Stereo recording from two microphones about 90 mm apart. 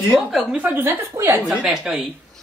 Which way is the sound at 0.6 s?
25° right (ahead or behind).